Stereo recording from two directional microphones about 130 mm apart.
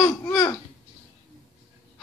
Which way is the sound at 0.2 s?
20° left (ahead or behind).